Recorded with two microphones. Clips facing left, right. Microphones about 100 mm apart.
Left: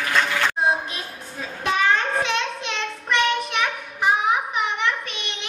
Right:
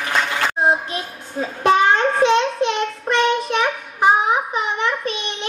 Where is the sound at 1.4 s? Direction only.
30° right (ahead or behind).